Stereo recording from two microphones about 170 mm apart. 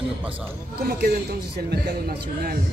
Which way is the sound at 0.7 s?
60° right (ahead or behind).